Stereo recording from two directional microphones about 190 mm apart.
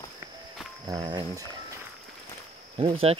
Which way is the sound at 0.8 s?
20° right (ahead or behind).